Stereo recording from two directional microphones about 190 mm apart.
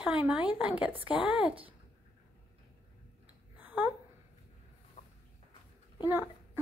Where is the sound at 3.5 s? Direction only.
10° right (ahead or behind).